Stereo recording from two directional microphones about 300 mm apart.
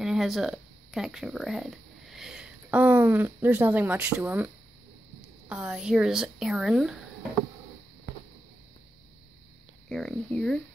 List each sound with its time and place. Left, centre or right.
0.0 s speech: centre
5.5 s speech: centre
9.8 s speech: centre